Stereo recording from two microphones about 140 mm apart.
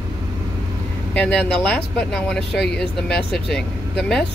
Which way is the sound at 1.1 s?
10° left (ahead or behind).